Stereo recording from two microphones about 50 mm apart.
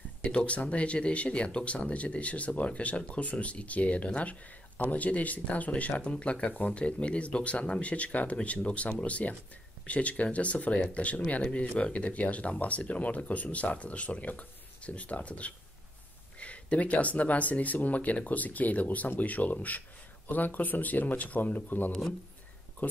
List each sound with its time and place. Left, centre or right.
0.2 s speech: left